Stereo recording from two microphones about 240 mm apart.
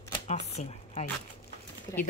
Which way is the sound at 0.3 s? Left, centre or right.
Left.